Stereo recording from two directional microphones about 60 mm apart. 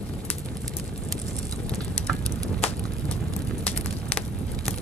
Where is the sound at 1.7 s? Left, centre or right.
Centre.